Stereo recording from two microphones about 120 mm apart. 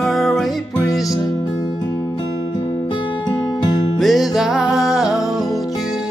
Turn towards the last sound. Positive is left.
turn(degrees=-5)  # may be behind; listen again after turning